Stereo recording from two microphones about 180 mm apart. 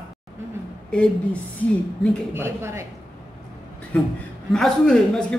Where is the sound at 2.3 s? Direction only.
15° right (ahead or behind).